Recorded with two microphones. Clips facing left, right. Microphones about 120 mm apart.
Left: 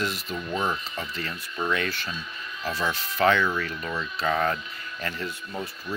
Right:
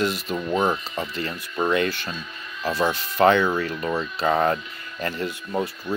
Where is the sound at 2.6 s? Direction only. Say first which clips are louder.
Right 6 dB; 50° right (ahead or behind).